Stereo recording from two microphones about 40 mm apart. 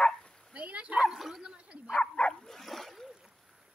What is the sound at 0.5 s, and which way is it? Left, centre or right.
Dog, right.